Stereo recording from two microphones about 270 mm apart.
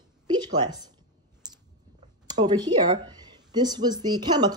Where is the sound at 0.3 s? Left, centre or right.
Centre.